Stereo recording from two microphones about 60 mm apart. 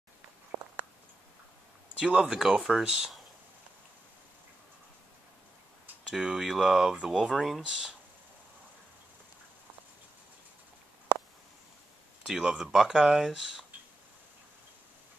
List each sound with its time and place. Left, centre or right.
0.5 s a sound: right
2.0 s speech: centre
6.0 s speech: centre
12.3 s speech: centre